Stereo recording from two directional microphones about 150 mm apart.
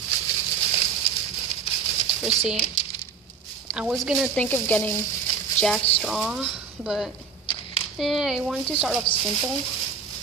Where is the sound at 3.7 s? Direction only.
5° right (ahead or behind).